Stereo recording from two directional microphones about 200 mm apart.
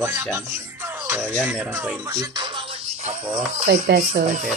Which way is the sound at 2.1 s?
20° right (ahead or behind).